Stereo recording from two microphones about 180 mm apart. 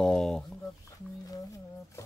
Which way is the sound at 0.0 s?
5° left (ahead or behind).